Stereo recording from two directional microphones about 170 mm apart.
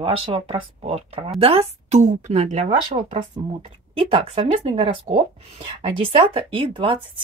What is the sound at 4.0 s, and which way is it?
Speech, 35° right (ahead or behind).